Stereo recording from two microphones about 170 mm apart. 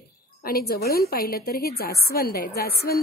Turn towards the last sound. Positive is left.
turn(degrees=60)  # may be behind; listen again after turning